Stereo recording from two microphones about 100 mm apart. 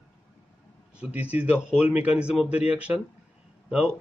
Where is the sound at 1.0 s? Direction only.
15° right (ahead or behind).